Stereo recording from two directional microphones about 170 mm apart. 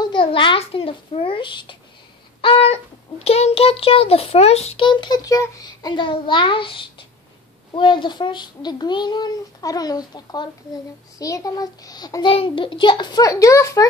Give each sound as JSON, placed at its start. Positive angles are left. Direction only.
{"t": 0.0, "sound": "a child's voice", "side_deg": 30}